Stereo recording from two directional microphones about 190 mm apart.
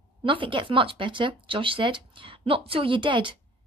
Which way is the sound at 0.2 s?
25° right (ahead or behind).